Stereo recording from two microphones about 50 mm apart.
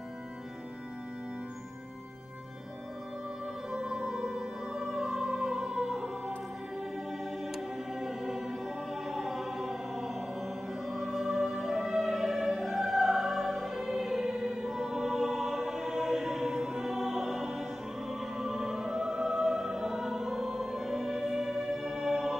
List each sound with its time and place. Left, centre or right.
3.7 s music: centre